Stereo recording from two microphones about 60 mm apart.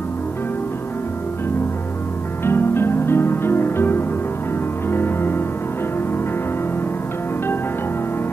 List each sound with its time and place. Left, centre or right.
2.4 s music: left